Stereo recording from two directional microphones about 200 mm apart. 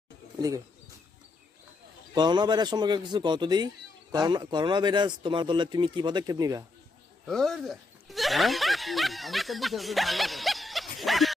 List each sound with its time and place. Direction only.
2.1 s a man's voice: 20° right (ahead or behind)
7.2 s speech: centre (ahead or behind)